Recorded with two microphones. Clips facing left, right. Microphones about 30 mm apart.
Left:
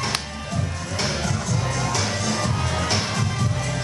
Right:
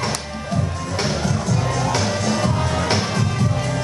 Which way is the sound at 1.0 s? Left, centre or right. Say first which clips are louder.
Right 3 dB; right.